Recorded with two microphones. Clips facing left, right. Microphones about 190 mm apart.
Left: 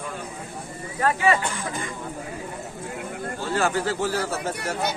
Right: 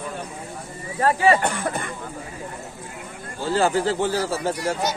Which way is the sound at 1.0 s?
35° right (ahead or behind).